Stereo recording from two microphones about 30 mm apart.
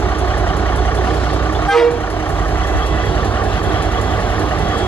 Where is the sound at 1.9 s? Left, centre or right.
Left.